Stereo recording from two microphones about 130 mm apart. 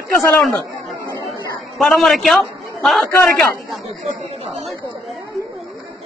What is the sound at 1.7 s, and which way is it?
A man's voice, centre (ahead or behind).